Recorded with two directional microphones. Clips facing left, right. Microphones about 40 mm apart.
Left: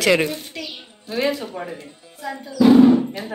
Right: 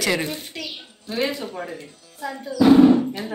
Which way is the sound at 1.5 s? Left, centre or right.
Centre.